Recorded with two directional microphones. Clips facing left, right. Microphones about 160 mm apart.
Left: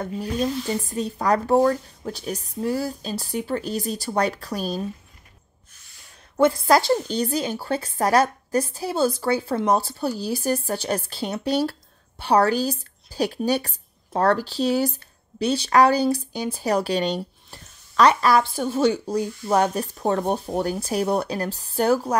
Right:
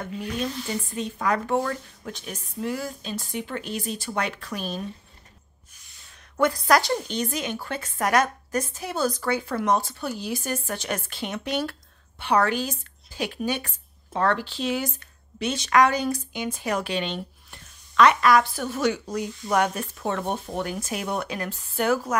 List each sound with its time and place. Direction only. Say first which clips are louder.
0.0 s a woman's voice: left 4 dB; 35° left (ahead or behind)
6.3 s a woman's voice: left 3 dB; 25° left (ahead or behind)